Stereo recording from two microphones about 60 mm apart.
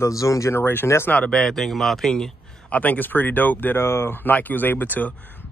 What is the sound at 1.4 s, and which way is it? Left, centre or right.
Speech, centre.